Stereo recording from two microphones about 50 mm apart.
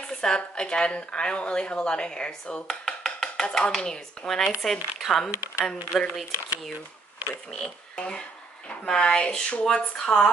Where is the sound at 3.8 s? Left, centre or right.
Centre.